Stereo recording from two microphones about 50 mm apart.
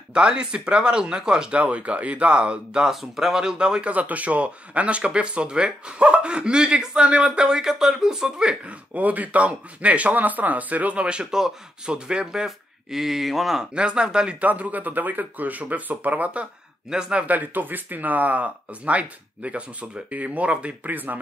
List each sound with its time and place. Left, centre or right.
0.1 s speech: centre
1.6 s speech: right
2.9 s speech: centre
3.9 s speech: right
8.9 s speech: right; by 12.4 s centre
12.4 s speech: centre
13.7 s speech: centre
14.4 s speech: right
16.9 s speech: centre
17.3 s speech: right